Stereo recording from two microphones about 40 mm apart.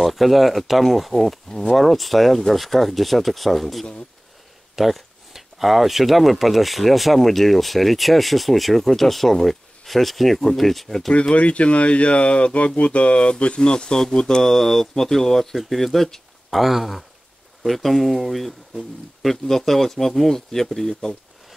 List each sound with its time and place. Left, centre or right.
0.0 s speech: centre
1.5 s speech: centre
1.8 s speech: centre
11.3 s speech: left; by 21.2 s centre